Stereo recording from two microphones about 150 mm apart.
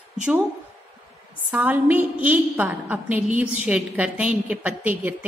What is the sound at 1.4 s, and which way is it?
A woman's voice, 10° right (ahead or behind).